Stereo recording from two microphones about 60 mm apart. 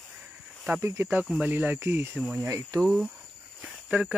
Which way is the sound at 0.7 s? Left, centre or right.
Right.